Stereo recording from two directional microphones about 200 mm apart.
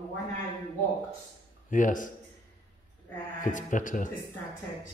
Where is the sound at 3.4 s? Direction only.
40° left (ahead or behind).